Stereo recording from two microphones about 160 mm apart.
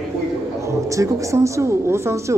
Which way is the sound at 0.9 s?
20° right (ahead or behind).